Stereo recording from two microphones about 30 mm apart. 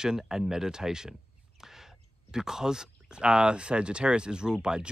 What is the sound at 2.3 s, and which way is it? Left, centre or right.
Speech, centre.